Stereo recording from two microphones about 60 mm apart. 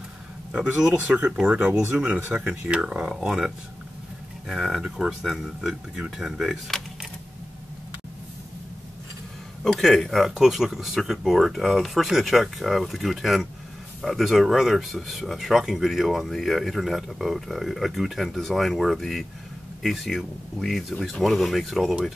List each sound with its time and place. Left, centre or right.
0.9 s speech: right
1.7 s speech: right
2.0 s speech: right; by 4.8 s centre
4.8 s speech: centre
5.2 s speech: centre
9.8 s speech: centre